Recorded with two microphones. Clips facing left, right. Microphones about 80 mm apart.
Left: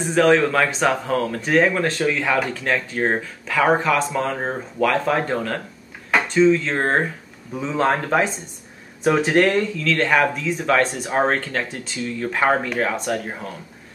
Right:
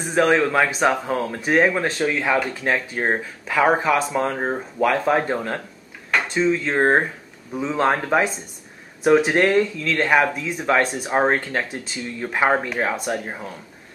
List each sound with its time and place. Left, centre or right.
0.1 s speech: centre
7.5 s a man's voice: centre